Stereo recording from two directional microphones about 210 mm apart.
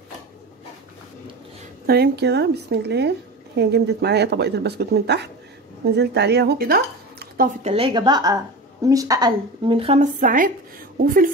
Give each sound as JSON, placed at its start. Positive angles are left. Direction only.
{"t": 1.9, "sound": "a woman's voice", "side_deg": -50}
{"t": 7.6, "sound": "a woman's voice", "side_deg": -25}